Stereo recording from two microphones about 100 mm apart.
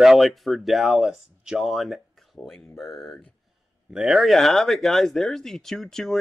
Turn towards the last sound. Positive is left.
turn(degrees=5)  # may be behind; listen again after turning